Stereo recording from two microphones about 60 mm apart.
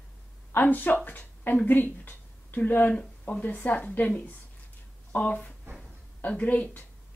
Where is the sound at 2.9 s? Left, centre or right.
Centre.